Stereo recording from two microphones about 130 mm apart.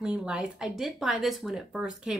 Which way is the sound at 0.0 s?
5° right (ahead or behind).